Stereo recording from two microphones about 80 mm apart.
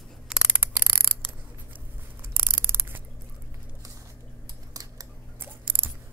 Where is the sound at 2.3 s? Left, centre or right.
Right.